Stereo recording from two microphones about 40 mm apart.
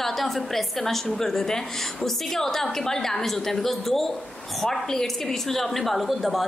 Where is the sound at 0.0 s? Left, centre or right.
Centre.